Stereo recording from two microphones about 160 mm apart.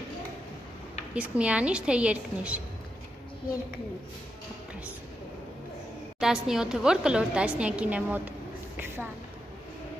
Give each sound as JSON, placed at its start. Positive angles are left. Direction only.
{"t": 1.3, "sound": "a woman's voice", "side_deg": -5}
{"t": 6.1, "sound": "a woman's voice", "side_deg": -5}
{"t": 8.7, "sound": "a sound", "side_deg": -15}